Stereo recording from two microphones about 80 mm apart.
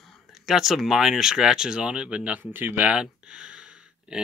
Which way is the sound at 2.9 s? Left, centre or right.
Centre.